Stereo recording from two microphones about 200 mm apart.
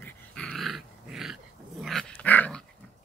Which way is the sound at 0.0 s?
5° left (ahead or behind).